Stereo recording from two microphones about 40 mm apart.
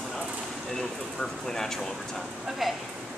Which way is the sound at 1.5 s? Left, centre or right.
Centre.